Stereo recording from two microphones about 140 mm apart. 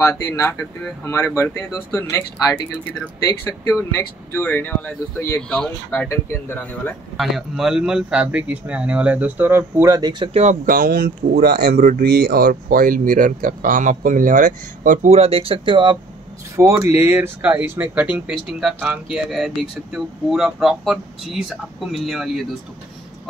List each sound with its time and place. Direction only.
0.2 s speech: 15° left (ahead or behind)
7.2 s speech: centre (ahead or behind); by 10.3 s 30° right (ahead or behind)
10.3 s speech: 55° right (ahead or behind); by 16.0 s 35° right (ahead or behind)
16.5 s speech: 20° right (ahead or behind)
18.5 s speech: centre (ahead or behind)